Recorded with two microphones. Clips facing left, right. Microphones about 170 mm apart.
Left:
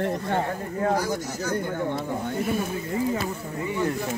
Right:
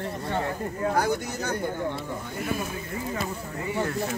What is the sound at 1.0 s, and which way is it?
Speech, 60° right (ahead or behind).